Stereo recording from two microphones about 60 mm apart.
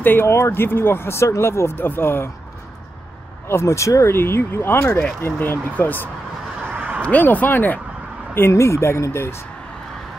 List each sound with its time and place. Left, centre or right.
0.0 s speech: left
0.3 s speech: left
3.4 s speech: left
4.1 s speech: left
6.7 s a sound: right
7.0 s speech: left
8.4 s speech: left